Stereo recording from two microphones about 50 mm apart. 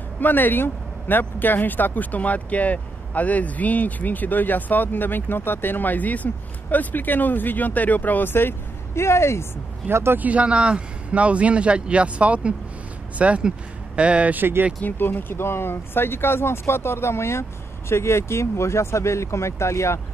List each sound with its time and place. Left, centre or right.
0.2 s speech: left
9.8 s speech: right
10.1 s speech: right
14.3 s speech: right
14.8 s speech: left